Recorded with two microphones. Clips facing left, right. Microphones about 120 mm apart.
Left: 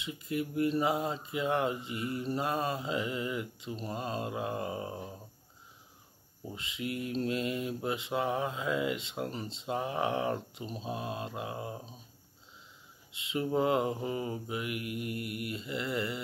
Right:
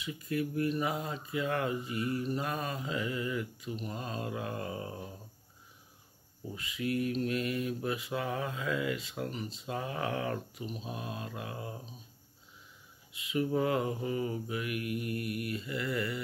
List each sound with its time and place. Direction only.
0.0 s speech: 25° left (ahead or behind)
6.4 s speech: 25° left (ahead or behind)
13.1 s speech: 25° left (ahead or behind)